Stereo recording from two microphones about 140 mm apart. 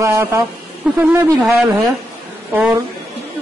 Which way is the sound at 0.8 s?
5° right (ahead or behind).